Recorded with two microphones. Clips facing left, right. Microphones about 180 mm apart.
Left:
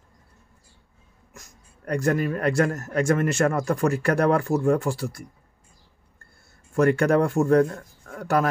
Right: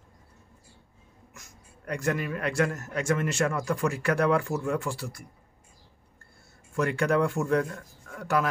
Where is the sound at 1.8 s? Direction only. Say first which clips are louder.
Left 6 dB; 40° left (ahead or behind).